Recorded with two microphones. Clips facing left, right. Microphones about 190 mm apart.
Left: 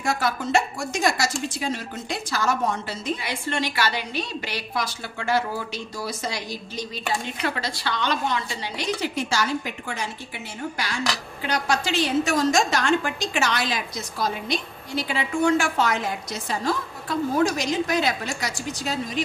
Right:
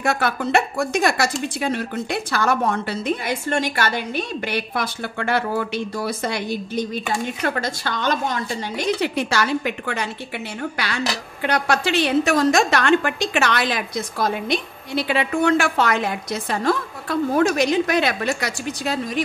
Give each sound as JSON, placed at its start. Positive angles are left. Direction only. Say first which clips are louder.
{"t": 0.0, "sound": "a woman's voice", "louder": "right 3 dB", "side_deg": -60}